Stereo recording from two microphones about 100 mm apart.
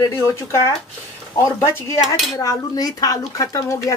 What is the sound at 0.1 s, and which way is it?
Speech, 30° left (ahead or behind).